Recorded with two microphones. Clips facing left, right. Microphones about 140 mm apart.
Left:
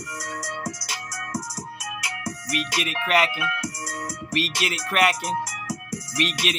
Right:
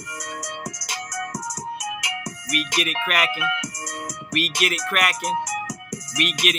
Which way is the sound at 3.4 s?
20° right (ahead or behind).